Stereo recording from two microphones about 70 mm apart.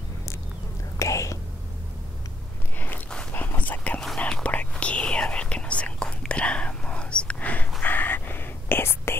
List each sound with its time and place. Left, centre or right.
0.9 s whispering: left
3.3 s whispering: left